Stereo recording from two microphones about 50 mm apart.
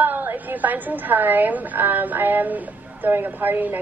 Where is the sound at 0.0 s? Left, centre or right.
Right.